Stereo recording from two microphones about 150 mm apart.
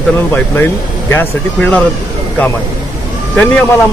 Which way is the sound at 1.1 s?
10° left (ahead or behind).